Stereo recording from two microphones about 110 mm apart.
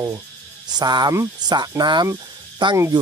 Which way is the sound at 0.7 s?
40° right (ahead or behind).